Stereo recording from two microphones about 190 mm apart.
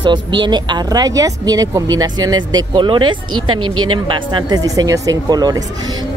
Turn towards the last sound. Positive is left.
turn(degrees=-20)  # may be behind; listen again after turning